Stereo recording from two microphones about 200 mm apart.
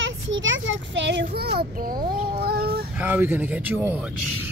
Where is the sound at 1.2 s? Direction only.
50° right (ahead or behind).